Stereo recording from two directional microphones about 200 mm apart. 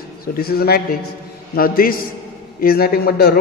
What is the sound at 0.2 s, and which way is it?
A man's voice, 50° left (ahead or behind).